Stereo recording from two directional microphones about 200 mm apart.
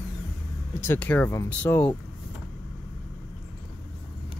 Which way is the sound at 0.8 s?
10° left (ahead or behind).